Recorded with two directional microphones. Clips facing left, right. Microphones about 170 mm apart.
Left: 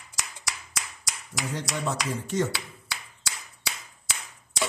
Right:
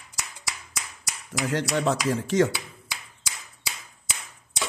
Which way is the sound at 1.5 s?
90° right.